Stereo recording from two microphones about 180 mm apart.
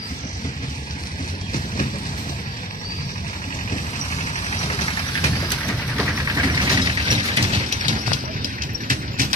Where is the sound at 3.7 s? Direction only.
40° left (ahead or behind).